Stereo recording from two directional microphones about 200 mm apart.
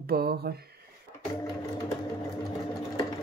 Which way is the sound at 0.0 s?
50° right (ahead or behind).